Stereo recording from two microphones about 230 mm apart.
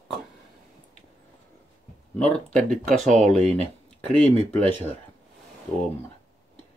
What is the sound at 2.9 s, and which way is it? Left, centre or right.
Speech, right.